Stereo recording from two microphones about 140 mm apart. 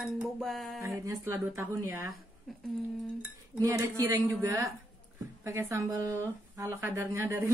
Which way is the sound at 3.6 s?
25° right (ahead or behind).